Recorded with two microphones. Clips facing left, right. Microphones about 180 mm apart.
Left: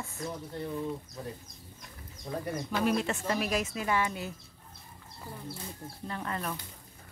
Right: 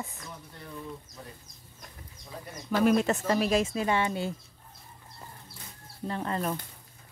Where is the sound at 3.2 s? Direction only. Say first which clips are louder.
Right 5 dB; 30° right (ahead or behind).